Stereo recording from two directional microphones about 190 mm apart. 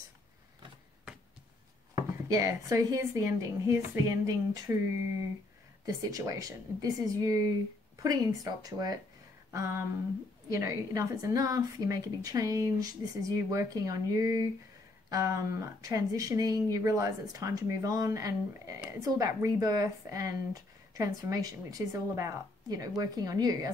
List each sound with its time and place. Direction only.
2.2 s speech: 15° right (ahead or behind)
5.9 s speech: 20° right (ahead or behind)